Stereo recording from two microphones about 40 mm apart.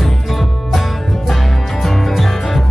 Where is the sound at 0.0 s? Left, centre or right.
Centre.